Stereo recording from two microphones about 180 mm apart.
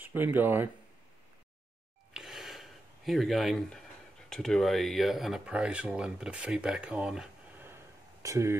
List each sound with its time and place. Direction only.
0.0 s speech: 10° right (ahead or behind)
2.1 s a sound: centre (ahead or behind)
4.3 s speech: centre (ahead or behind); by 8.5 s 15° right (ahead or behind)